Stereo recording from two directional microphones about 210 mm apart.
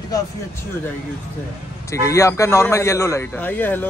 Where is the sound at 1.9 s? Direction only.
15° left (ahead or behind).